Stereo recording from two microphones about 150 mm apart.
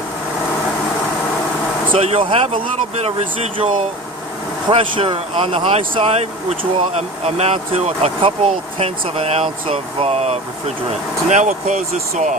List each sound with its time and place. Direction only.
2.0 s speech: 40° right (ahead or behind)